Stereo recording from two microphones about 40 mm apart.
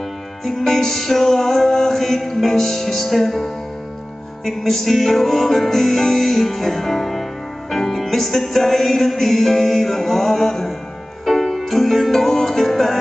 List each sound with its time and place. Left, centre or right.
0.5 s music: centre